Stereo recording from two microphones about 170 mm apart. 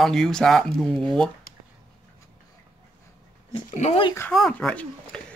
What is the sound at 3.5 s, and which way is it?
Speech, 35° left (ahead or behind).